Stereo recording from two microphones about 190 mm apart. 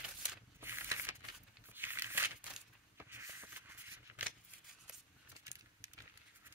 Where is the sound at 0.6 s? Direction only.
10° right (ahead or behind).